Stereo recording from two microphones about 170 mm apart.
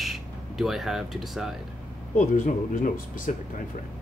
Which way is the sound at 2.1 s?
50° left (ahead or behind).